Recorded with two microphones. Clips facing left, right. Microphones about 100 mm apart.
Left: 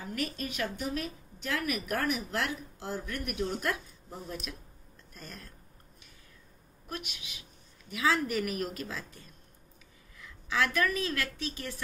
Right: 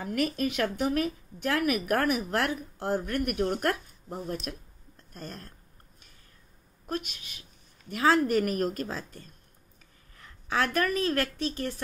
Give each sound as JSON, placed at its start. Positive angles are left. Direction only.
{"t": 0.0, "sound": "a woman's voice", "side_deg": -65}
{"t": 4.5, "sound": "a sound", "side_deg": -50}
{"t": 6.9, "sound": "a woman's voice", "side_deg": -40}